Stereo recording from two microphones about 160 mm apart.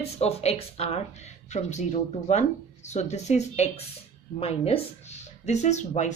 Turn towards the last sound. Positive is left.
turn(degrees=45)  # may be behind; listen again after turning